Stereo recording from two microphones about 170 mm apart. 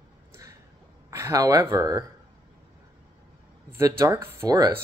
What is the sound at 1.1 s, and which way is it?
Speech, 20° right (ahead or behind).